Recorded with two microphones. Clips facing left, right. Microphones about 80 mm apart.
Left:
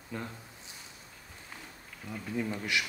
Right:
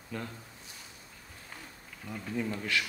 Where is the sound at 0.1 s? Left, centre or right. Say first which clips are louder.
Even; left.